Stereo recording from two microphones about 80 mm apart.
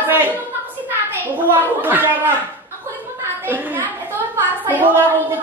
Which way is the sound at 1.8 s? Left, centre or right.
Right.